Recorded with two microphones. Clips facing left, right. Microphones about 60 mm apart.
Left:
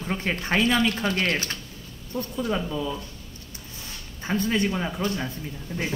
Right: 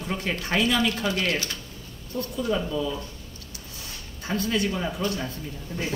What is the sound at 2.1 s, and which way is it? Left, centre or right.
Speech, centre.